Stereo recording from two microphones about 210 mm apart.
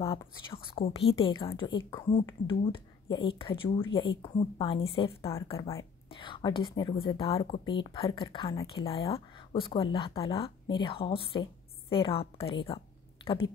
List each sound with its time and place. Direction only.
0.0 s a woman's voice: 25° left (ahead or behind)